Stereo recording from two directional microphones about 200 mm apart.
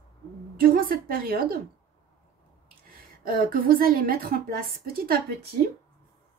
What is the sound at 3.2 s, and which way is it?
Speech, 45° right (ahead or behind).